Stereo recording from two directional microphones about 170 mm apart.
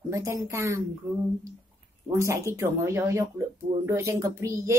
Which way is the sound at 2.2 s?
15° right (ahead or behind).